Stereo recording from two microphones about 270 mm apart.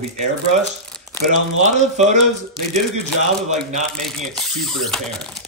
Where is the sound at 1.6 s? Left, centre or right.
Right.